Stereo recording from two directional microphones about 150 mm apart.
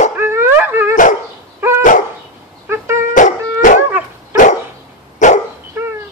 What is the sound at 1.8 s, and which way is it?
Dog, 60° left (ahead or behind).